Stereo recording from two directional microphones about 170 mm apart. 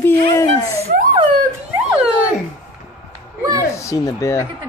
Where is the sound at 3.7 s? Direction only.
20° left (ahead or behind).